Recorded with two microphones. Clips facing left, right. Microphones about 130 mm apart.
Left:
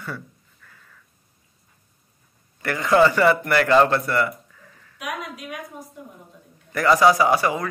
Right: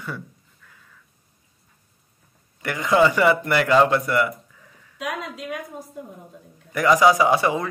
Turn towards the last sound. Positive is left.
turn(degrees=-20)  # may be behind; listen again after turning